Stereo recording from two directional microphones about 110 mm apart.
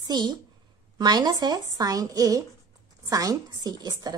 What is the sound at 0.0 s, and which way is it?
A woman's voice, 40° right (ahead or behind).